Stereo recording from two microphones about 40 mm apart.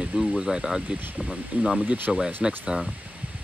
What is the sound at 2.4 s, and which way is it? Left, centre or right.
Speech, centre.